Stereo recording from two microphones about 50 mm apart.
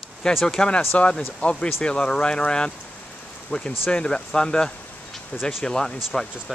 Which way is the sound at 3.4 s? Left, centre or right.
Centre.